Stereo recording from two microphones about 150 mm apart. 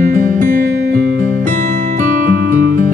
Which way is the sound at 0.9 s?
65° right (ahead or behind).